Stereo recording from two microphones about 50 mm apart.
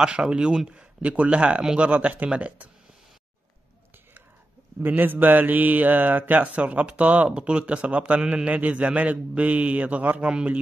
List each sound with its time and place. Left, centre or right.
0.0 s a man's voice: centre
4.8 s a man's voice: right